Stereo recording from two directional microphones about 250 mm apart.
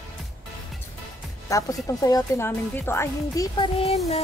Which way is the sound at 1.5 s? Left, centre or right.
Centre.